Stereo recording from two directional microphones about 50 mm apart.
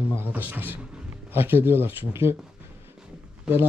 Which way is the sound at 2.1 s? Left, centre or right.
Right.